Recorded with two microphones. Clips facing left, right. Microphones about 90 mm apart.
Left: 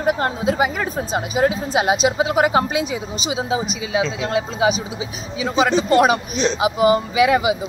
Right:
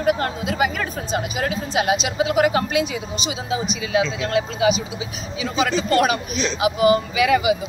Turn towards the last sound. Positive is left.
turn(degrees=30)  # may be behind; listen again after turning